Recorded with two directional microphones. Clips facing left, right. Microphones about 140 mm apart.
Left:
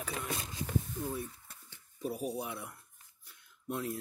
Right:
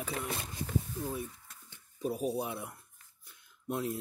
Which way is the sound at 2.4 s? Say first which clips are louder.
Right 3 dB; 25° right (ahead or behind).